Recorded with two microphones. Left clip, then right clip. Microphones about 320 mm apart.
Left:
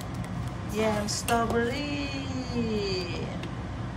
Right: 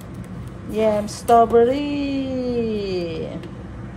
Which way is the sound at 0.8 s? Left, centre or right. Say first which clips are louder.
Right 8 dB; centre.